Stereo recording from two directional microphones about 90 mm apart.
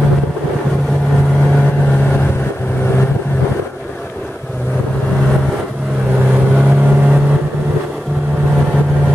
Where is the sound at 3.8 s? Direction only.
10° left (ahead or behind).